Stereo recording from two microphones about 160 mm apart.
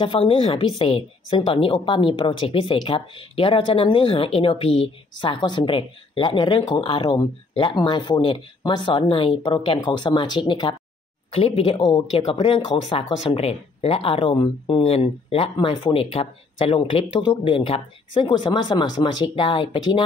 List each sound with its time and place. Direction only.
0.0 s speech: 35° left (ahead or behind)